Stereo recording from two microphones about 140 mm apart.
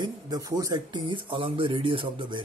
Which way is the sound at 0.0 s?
25° right (ahead or behind).